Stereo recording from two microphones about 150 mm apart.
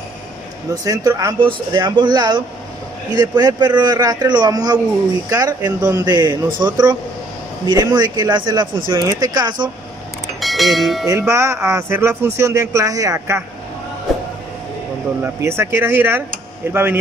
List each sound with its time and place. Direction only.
0.7 s speech: 25° right (ahead or behind)
10.4 s speech: centre (ahead or behind)
11.1 s speech: 20° right (ahead or behind)
15.2 s speech: 15° right (ahead or behind)